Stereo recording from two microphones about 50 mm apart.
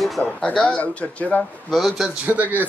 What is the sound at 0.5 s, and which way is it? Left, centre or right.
Speech, left.